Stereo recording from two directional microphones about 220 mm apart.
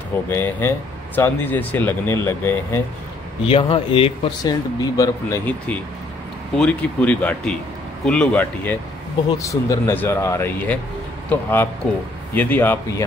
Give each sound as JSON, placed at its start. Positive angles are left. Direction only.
{"t": 0.3, "sound": "speech", "side_deg": 10}
{"t": 3.4, "sound": "speech", "side_deg": 25}